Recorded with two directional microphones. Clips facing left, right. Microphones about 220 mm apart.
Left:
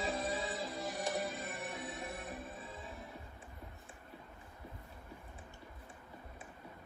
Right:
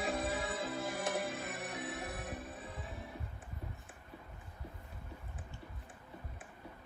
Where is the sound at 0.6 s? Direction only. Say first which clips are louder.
Right 2 dB; 5° right (ahead or behind).